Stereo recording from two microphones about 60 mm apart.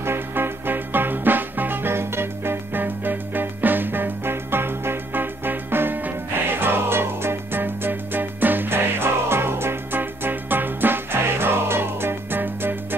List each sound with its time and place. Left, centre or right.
0.0 s music: right